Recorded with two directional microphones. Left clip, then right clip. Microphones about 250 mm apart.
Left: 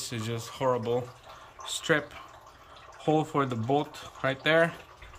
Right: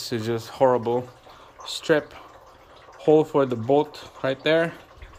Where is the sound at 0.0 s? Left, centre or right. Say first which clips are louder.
Right 8 dB; centre.